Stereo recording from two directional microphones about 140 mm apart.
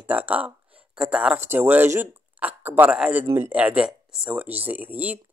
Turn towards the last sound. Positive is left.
turn(degrees=-10)  # may be behind; listen again after turning